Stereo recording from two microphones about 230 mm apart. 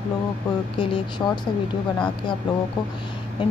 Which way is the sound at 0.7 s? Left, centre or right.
Left.